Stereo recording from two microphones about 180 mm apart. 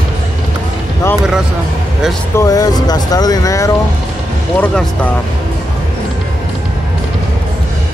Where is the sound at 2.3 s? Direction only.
20° left (ahead or behind).